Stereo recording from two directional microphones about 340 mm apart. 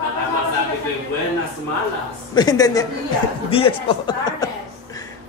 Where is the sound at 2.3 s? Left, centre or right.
Centre.